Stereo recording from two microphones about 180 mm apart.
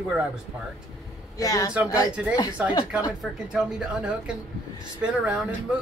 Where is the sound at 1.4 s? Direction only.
20° left (ahead or behind).